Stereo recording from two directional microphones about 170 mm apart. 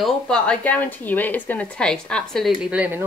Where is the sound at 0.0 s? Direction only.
5° left (ahead or behind); by 3.1 s 10° right (ahead or behind).